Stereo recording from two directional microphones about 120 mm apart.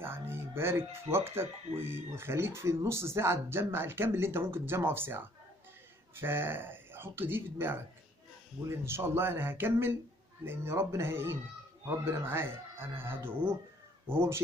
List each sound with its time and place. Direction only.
0.0 s music: 20° right (ahead or behind)
1.1 s speech: 20° right (ahead or behind)